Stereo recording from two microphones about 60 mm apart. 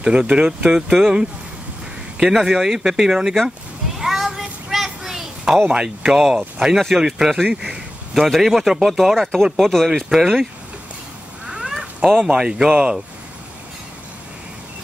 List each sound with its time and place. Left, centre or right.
0.0 s speech: centre
4.0 s a sound: centre
5.7 s a man's voice: centre
10.0 s speech: centre
11.4 s a sound: centre
12.2 s speech: centre